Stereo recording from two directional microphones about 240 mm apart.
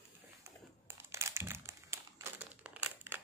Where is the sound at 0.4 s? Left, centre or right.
Centre.